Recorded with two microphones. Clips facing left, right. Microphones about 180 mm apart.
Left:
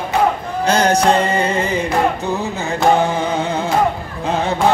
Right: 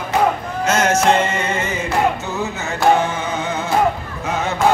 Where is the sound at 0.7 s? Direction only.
35° left (ahead or behind).